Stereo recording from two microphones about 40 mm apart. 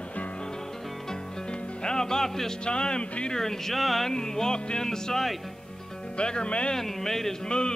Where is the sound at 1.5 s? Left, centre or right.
Left.